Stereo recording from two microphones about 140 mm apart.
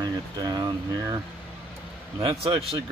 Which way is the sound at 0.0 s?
30° right (ahead or behind).